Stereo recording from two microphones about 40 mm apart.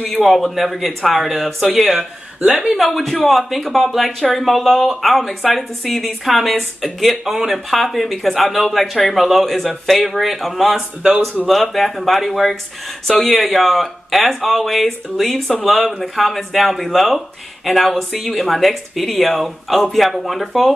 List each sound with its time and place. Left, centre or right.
0.2 s speech: centre